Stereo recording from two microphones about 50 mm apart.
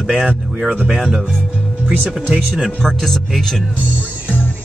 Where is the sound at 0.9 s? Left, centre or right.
Centre.